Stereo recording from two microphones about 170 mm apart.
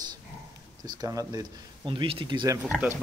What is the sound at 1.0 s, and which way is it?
Speech, 20° right (ahead or behind).